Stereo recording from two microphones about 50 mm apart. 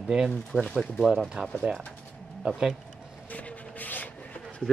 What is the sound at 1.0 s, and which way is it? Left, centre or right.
Speech, centre.